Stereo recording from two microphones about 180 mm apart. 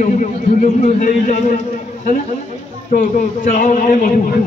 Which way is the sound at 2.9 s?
50° left (ahead or behind).